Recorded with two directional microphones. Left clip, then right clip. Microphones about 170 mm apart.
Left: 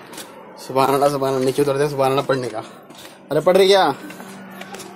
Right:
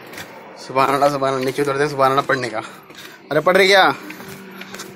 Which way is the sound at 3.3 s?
10° left (ahead or behind).